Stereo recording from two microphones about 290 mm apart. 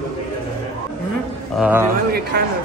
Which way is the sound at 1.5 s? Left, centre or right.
Centre.